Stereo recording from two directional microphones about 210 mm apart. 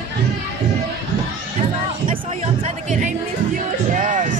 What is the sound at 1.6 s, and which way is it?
Music, 30° right (ahead or behind).